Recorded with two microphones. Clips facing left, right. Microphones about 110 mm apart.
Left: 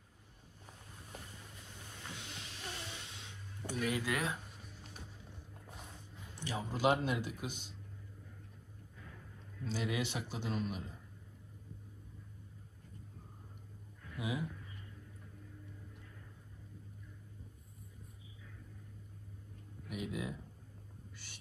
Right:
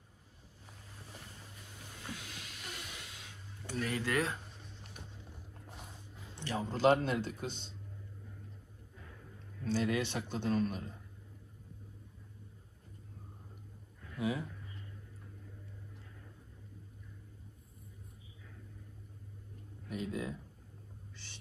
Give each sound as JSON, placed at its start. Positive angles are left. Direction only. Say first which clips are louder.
{"t": 2.1, "sound": "a sound", "louder": "even", "side_deg": 25}
{"t": 3.7, "sound": "speech", "louder": "right 2 dB", "side_deg": 10}
{"t": 6.4, "sound": "speech", "louder": "right 4 dB", "side_deg": 10}
{"t": 9.7, "sound": "speech", "louder": "right 5 dB", "side_deg": 10}
{"t": 14.1, "sound": "speech", "louder": "right 4 dB", "side_deg": 10}
{"t": 19.9, "sound": "speech", "louder": "right 2 dB", "side_deg": 10}